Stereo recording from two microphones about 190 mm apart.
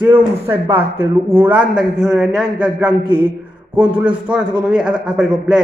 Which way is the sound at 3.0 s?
25° right (ahead or behind).